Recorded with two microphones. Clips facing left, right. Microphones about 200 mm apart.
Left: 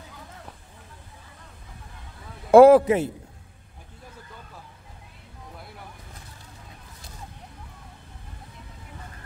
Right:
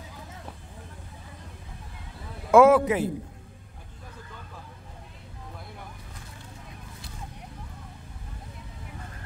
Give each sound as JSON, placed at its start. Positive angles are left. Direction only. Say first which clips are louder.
{"t": 2.5, "sound": "a man's voice", "louder": "left 5 dB", "side_deg": 35}